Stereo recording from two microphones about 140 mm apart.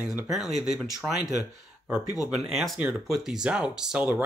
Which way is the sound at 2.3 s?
Centre (ahead or behind).